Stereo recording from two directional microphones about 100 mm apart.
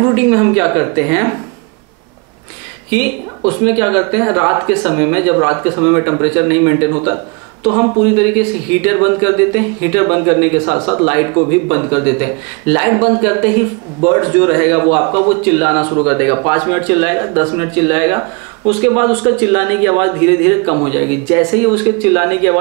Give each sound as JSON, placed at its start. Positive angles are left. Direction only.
{"t": 0.0, "sound": "speech", "side_deg": -15}
{"t": 2.9, "sound": "speech", "side_deg": -10}
{"t": 8.2, "sound": "speech", "side_deg": -10}